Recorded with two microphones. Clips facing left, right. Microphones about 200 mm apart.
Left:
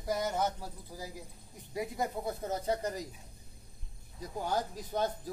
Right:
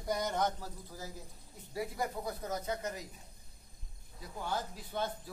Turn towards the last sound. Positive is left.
turn(degrees=40)  # may be behind; listen again after turning